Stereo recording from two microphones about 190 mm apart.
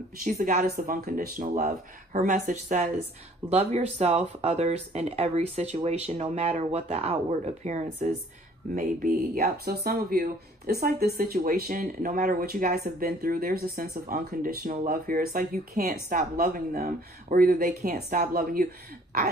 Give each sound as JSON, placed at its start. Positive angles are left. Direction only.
{"t": 0.2, "sound": "speech", "side_deg": -40}
{"t": 8.7, "sound": "speech", "side_deg": -45}